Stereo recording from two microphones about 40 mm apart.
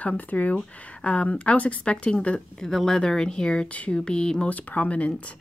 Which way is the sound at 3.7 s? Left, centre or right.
Left.